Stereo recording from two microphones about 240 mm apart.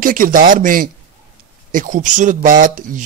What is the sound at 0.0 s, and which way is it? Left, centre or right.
Speech, right.